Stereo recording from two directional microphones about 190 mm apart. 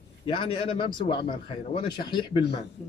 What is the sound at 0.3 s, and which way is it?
A man's voice, 25° left (ahead or behind).